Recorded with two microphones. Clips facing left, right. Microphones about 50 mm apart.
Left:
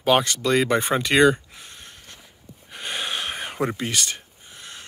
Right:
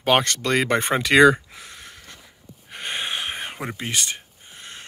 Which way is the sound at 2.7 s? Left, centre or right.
Right.